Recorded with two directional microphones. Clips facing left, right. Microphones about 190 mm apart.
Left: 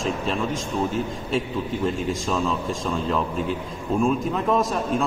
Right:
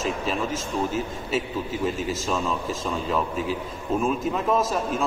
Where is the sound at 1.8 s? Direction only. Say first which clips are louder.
Left 1 dB; 5° right (ahead or behind).